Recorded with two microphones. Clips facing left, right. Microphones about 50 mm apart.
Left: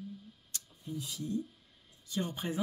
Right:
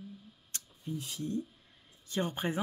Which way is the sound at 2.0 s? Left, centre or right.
Right.